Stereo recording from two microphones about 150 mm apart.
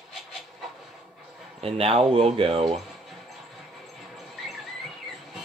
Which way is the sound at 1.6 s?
40° right (ahead or behind).